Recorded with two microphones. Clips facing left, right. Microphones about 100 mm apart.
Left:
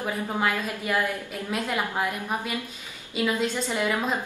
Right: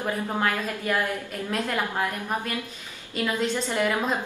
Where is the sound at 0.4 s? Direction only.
10° left (ahead or behind).